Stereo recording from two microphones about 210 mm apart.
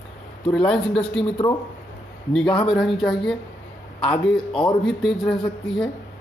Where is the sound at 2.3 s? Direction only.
5° left (ahead or behind).